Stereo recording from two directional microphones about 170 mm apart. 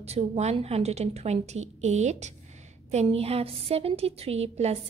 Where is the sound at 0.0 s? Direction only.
40° right (ahead or behind).